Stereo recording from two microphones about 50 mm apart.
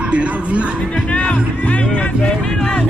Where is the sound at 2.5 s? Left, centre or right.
Left.